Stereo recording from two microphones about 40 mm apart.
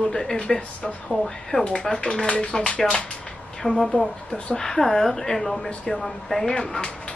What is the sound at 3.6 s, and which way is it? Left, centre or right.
Speech, centre.